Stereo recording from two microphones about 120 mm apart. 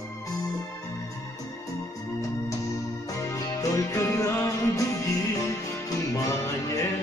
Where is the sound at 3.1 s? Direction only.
30° left (ahead or behind).